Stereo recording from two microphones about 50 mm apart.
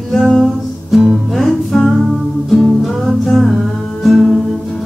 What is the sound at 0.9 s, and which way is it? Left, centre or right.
Music, centre.